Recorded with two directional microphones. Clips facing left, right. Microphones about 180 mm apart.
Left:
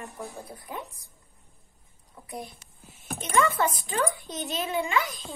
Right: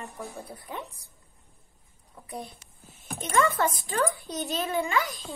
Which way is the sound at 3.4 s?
50° right (ahead or behind).